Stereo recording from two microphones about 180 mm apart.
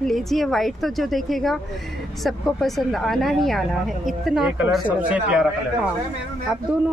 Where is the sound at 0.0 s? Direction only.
Centre (ahead or behind).